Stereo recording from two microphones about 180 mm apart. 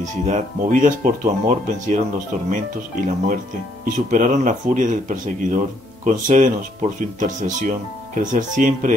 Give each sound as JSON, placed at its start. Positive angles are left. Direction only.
{"t": 0.0, "sound": "speech", "side_deg": -45}